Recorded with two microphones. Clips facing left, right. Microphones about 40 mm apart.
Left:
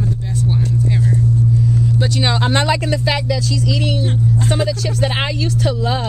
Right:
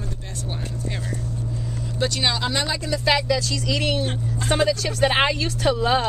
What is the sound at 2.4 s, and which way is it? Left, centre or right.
Speech, left.